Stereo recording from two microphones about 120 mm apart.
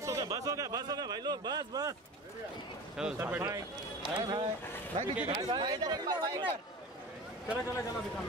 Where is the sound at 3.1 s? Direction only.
20° right (ahead or behind).